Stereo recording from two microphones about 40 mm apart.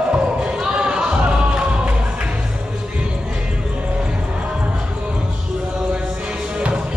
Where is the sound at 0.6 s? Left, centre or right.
Centre.